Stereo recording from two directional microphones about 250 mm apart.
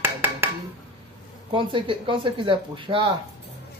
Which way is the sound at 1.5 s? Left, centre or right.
Centre.